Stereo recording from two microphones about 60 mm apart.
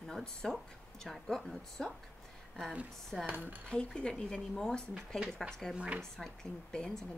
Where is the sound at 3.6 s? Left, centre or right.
Centre.